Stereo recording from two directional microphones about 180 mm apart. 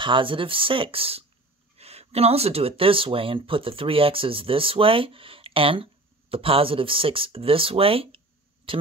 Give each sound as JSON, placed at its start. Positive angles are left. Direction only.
{"t": 0.0, "sound": "speech", "side_deg": -30}